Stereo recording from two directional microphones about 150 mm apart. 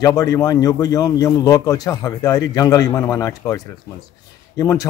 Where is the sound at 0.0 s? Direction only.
25° left (ahead or behind).